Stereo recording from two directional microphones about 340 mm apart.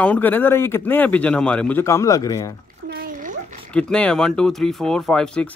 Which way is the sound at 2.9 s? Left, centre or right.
Right.